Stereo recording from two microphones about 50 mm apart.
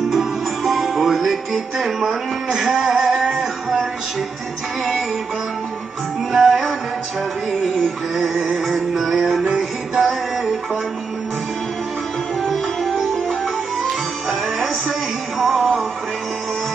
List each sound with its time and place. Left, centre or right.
0.1 s music: centre
6.3 s music: centre
12.4 s sitar: centre
13.8 s music: centre